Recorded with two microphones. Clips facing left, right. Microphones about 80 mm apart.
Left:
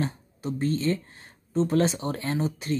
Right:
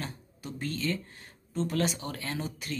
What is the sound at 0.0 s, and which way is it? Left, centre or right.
Speech, left.